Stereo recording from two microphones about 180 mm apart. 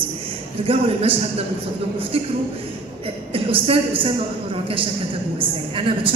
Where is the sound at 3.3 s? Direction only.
30° right (ahead or behind).